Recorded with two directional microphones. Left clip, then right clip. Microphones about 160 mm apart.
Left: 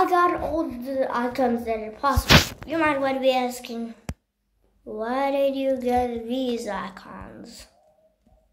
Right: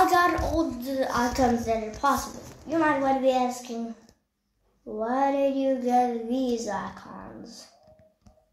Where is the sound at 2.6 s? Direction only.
10° left (ahead or behind).